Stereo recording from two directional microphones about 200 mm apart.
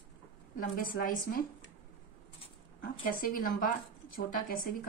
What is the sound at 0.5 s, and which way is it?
Speech, 45° left (ahead or behind).